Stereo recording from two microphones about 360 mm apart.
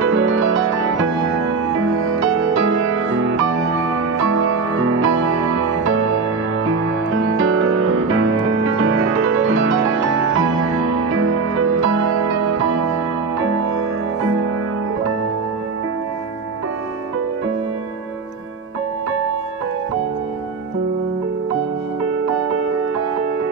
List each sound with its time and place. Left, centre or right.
0.0 s music: right
1.8 s music: right
7.1 s music: right
13.4 s music: right